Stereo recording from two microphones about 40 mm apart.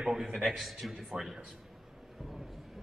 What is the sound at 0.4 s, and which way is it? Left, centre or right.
Speech, centre.